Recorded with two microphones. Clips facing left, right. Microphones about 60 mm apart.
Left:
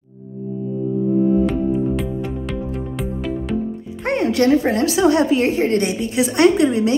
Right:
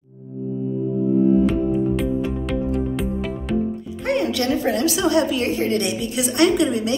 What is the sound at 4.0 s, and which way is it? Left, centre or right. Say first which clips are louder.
A woman's voice: left 4 dB; left.